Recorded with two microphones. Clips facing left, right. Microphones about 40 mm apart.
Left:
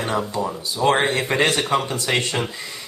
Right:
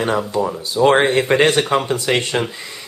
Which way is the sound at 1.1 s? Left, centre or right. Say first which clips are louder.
Right 5 dB; right.